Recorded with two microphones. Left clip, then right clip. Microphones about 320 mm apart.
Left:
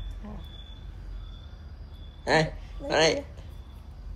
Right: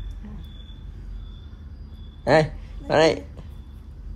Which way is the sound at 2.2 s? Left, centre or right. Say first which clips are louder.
Right 6 dB; centre.